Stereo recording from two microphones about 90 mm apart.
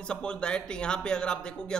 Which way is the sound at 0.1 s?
10° left (ahead or behind).